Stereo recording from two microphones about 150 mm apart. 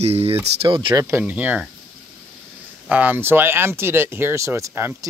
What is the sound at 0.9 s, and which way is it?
Speech, 15° right (ahead or behind).